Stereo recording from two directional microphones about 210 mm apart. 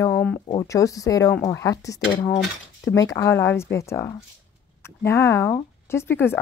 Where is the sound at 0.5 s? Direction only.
15° left (ahead or behind).